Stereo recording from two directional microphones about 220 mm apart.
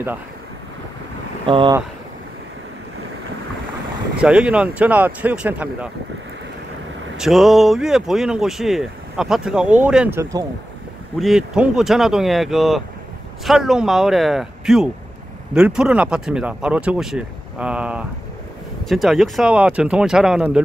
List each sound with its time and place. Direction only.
1.4 s speech: 25° right (ahead or behind)
4.2 s speech: 5° right (ahead or behind)
7.2 s speech: centre (ahead or behind)